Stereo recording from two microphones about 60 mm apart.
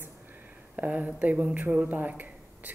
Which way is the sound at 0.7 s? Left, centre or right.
Right.